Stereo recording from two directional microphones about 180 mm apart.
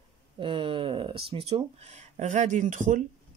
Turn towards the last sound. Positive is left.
turn(degrees=-45)  # may be behind; listen again after turning